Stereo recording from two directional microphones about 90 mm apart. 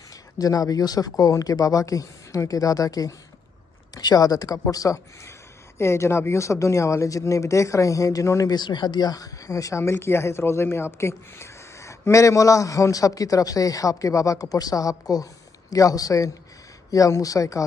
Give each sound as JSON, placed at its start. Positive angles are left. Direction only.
{"t": 0.1, "sound": "speech", "side_deg": 40}